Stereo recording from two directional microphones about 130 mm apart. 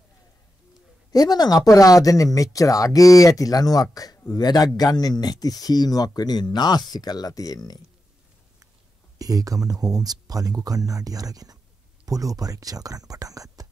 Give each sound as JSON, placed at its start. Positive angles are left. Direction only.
{"t": 1.1, "sound": "speech", "side_deg": 30}
{"t": 9.2, "sound": "speech", "side_deg": -30}